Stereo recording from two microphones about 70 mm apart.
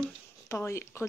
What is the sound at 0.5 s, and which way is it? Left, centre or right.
Speech, left.